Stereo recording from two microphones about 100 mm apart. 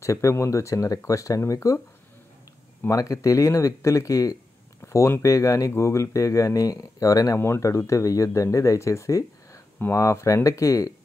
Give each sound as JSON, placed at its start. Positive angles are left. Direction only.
{"t": 0.0, "sound": "speech", "side_deg": 30}
{"t": 2.8, "sound": "speech", "side_deg": 35}